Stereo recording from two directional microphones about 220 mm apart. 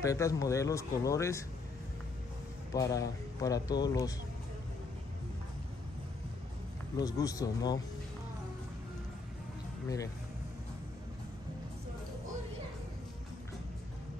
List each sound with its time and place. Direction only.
0.0 s speech: 15° left (ahead or behind)
2.7 s speech: 15° left (ahead or behind)
7.0 s speech: 15° left (ahead or behind)